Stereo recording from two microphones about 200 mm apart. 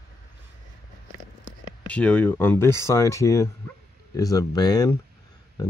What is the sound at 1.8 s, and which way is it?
Speech, 5° left (ahead or behind).